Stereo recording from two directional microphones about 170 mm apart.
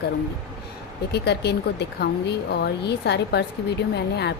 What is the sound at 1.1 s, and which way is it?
A woman's voice, 80° left.